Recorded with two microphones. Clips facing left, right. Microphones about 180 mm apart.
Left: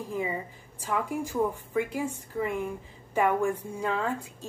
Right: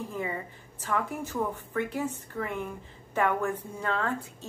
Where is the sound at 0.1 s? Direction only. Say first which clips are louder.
Left 2 dB; 10° left (ahead or behind).